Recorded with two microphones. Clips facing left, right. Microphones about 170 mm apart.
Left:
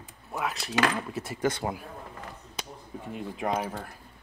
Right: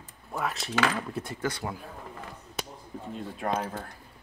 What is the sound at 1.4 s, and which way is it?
Speech, 20° left (ahead or behind).